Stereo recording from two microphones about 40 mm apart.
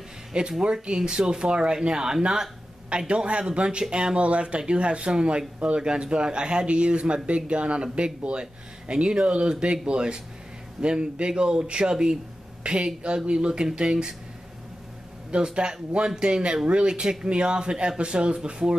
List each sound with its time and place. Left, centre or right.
0.3 s speech: centre
15.3 s speech: right